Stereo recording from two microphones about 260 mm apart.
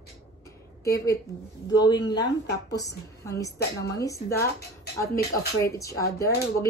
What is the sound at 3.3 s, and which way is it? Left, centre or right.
Speech, centre.